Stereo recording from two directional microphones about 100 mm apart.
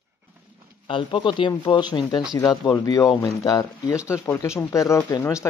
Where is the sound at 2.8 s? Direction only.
40° left (ahead or behind).